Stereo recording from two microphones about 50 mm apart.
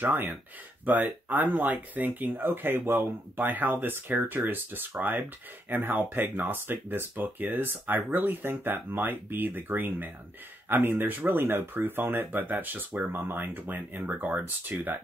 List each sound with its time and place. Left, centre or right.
0.0 s speech: right